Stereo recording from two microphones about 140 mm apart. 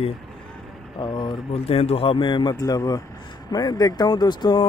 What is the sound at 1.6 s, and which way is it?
Speech, 45° left (ahead or behind).